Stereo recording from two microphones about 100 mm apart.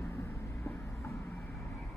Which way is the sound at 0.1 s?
30° left (ahead or behind).